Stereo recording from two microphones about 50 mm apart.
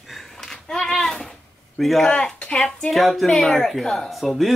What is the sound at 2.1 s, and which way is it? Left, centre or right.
Speech, centre.